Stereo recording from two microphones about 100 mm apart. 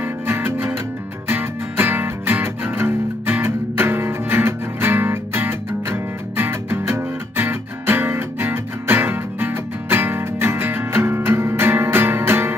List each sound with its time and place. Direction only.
0.0 s music: 25° right (ahead or behind)